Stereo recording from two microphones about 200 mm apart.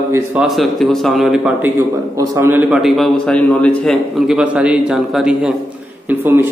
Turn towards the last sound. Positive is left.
turn(degrees=-10)  # may be behind; listen again after turning